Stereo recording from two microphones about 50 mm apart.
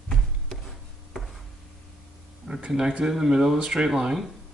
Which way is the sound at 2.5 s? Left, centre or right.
Centre.